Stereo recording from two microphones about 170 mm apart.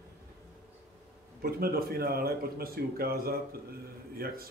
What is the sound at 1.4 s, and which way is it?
Speech, 60° right (ahead or behind).